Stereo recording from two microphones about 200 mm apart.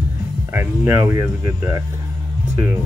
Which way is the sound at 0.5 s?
10° right (ahead or behind).